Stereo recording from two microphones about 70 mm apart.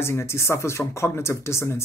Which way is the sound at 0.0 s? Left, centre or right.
Left.